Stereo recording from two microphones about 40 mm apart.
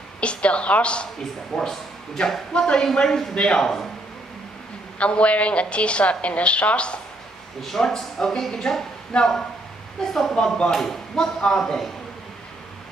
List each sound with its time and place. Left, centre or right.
0.2 s a woman's voice: left
1.5 s a woman's voice: centre
4.9 s a woman's voice: left
7.6 s speech: centre
9.1 s a woman's voice: left
10.0 s speech: centre